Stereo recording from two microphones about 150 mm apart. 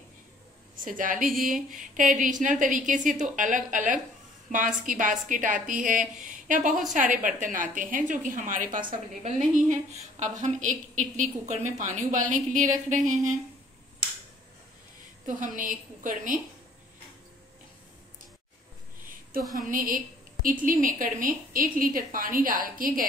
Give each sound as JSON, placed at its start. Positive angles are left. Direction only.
{"t": 0.7, "sound": "a woman's voice", "side_deg": -65}
{"t": 1.3, "sound": "a sound", "side_deg": 0}
{"t": 1.8, "sound": "a woman's voice", "side_deg": -60}
{"t": 9.2, "sound": "a woman's voice", "side_deg": -55}
{"t": 15.2, "sound": "a woman's voice", "side_deg": -60}
{"t": 19.6, "sound": "a woman's voice", "side_deg": -65}